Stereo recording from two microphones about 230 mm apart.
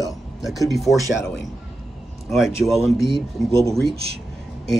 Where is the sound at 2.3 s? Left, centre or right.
Centre.